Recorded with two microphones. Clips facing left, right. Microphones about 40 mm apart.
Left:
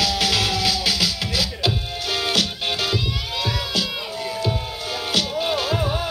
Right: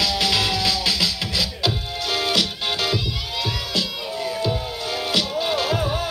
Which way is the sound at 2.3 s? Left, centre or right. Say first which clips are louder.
Even; centre.